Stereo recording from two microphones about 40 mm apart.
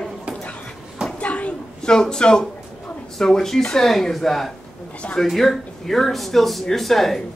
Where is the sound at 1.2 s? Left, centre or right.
Left.